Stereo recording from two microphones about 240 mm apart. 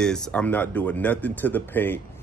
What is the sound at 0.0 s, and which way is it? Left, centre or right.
Speech, centre.